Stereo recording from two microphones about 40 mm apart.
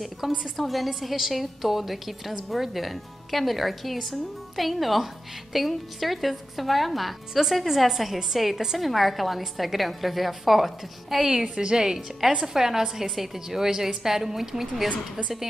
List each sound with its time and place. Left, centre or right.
0.2 s a woman's voice: centre
11.2 s a woman's voice: centre